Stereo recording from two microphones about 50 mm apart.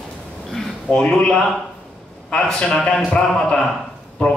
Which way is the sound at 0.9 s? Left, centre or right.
Centre.